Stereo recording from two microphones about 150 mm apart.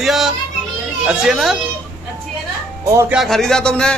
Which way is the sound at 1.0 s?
Centre (ahead or behind).